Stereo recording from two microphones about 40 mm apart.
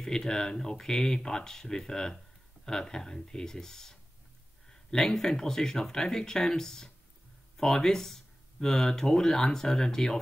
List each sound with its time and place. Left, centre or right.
0.0 s speech: centre